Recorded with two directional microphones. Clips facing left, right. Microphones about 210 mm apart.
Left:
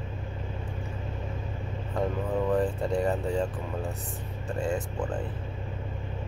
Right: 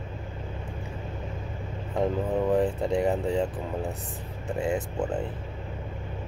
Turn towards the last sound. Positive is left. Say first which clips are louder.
# right 3 dB
turn(degrees=-20)  # may be behind; listen again after turning